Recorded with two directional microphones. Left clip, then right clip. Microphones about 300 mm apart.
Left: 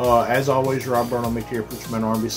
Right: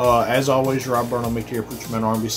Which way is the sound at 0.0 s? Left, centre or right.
Centre.